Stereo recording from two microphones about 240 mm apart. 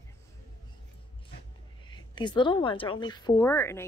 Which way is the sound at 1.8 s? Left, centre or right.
Centre.